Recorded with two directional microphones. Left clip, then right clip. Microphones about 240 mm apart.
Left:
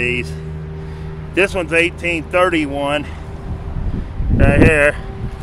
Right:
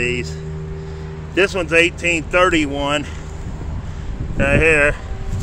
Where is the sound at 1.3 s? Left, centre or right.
Centre.